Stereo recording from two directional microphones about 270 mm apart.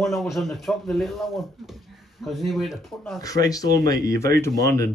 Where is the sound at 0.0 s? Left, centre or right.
Centre.